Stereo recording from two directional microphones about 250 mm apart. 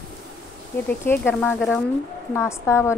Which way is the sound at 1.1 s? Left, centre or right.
Centre.